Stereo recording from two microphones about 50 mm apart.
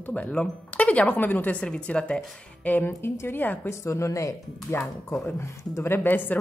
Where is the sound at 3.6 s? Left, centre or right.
Left.